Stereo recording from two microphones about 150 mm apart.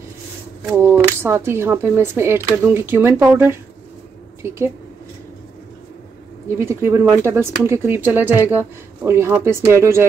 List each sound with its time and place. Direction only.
0.7 s speech: 15° right (ahead or behind)
6.7 s speech: 15° right (ahead or behind)